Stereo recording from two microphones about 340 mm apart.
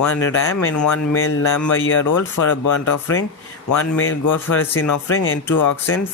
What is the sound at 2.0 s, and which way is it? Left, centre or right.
Speech, left.